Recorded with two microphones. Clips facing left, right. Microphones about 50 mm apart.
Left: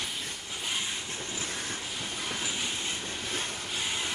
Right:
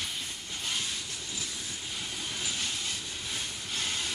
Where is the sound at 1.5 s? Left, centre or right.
Left.